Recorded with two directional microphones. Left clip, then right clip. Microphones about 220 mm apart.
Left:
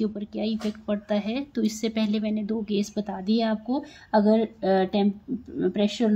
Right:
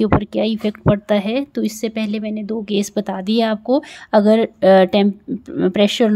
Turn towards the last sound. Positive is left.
turn(degrees=-45)  # may be behind; listen again after turning